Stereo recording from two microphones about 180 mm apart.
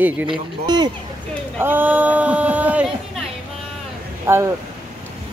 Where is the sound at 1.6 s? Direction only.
10° right (ahead or behind).